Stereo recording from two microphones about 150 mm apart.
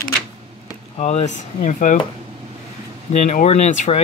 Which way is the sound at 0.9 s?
50° left (ahead or behind).